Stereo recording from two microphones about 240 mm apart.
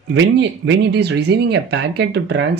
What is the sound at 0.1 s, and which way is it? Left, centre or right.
Speech, right.